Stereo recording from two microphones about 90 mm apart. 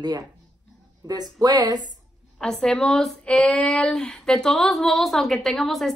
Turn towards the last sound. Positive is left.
turn(degrees=0)  # may be behind; listen again after turning